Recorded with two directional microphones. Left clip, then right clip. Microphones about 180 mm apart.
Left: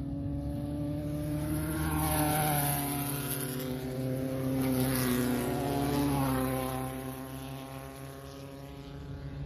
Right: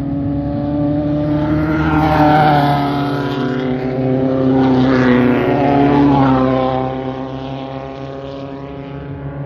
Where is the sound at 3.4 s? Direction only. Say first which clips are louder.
Right 19 dB; 90° left; by 6.0 s 70° left (ahead or behind).